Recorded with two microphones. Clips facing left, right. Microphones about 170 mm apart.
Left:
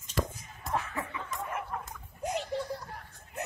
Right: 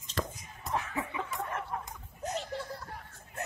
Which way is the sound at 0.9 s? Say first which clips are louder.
Right 2 dB; 15° right (ahead or behind).